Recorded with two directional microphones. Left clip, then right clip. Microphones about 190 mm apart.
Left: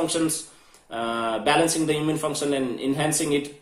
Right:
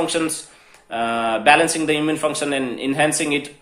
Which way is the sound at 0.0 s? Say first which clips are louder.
Right 3 dB; 10° right (ahead or behind).